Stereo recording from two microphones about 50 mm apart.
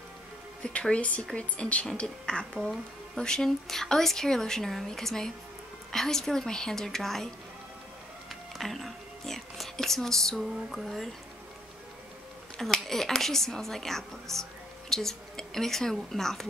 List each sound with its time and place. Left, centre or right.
0.6 s speech: left; by 7.2 s centre
8.3 s music: centre
10.4 s a sound: centre
12.5 s speech: centre